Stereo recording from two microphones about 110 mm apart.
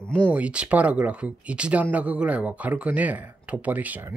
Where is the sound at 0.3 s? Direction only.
10° right (ahead or behind).